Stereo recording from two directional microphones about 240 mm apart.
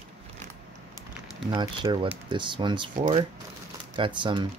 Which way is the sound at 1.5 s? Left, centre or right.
Centre.